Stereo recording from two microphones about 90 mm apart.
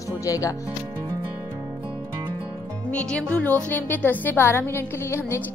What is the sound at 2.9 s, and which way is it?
A woman's voice, 15° left (ahead or behind).